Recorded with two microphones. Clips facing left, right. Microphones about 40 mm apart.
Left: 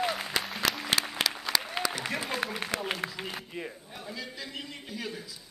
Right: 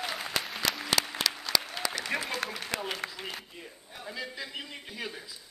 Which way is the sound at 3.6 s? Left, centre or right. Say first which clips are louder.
Left 8 dB; left.